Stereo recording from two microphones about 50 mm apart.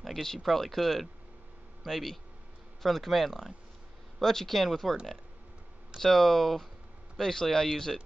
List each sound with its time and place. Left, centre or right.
0.0 s speech: centre
5.9 s speech: centre